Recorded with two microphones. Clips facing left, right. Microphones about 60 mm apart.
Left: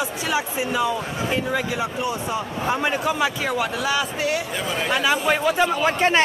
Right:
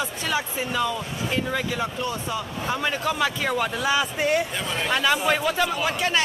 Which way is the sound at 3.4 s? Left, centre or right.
Centre.